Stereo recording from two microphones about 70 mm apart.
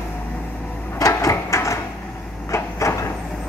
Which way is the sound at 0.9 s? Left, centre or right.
Left.